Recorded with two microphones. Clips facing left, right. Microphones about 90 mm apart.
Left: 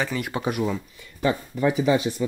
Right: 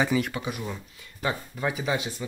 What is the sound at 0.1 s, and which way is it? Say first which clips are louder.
Speech: right 4 dB; 5° right (ahead or behind).